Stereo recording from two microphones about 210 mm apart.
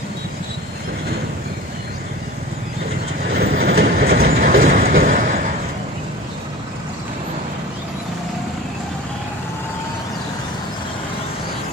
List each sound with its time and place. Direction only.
3.3 s train: 45° right (ahead or behind)